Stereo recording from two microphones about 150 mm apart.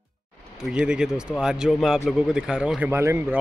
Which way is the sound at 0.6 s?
5° right (ahead or behind).